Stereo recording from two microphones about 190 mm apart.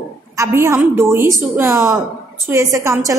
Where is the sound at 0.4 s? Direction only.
15° right (ahead or behind).